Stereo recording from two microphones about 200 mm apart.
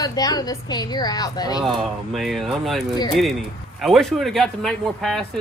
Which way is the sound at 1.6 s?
Centre (ahead or behind).